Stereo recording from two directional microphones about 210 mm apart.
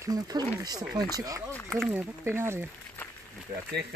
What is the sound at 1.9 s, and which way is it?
Speech, 10° right (ahead or behind).